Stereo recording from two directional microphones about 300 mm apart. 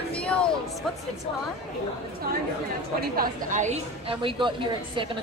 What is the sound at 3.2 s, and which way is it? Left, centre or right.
A woman's voice, right.